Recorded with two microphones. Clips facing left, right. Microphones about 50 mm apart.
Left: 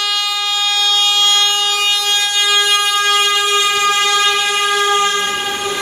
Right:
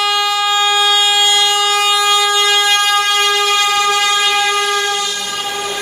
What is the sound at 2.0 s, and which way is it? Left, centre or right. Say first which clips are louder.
Vehicle: right 4 dB; centre.